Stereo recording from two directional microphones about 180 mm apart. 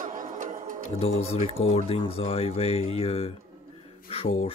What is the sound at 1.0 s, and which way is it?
Speech, 35° left (ahead or behind).